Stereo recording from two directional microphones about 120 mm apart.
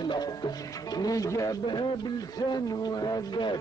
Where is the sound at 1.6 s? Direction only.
40° left (ahead or behind).